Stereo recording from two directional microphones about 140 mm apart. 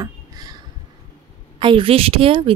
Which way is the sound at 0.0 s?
30° right (ahead or behind).